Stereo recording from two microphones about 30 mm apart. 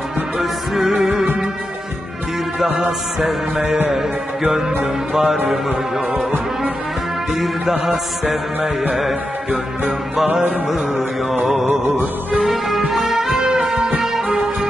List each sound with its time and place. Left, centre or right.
0.4 s music: centre
3.2 s music: centre
7.3 s music: centre
12.4 s music: centre